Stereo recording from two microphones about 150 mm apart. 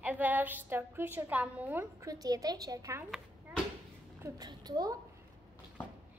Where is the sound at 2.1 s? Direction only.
25° right (ahead or behind).